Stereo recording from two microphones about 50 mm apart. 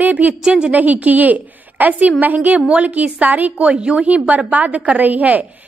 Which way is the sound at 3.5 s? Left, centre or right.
Right.